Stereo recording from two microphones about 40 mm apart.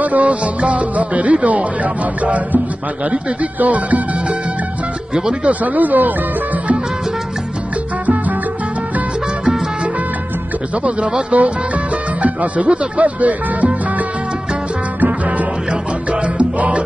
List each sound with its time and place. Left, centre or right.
0.0 s speech: right
3.5 s speech: right
5.4 s speech: right
10.8 s speech: right
15.0 s music: right